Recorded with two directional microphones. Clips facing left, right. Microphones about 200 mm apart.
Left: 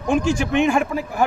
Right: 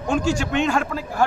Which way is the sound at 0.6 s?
15° left (ahead or behind).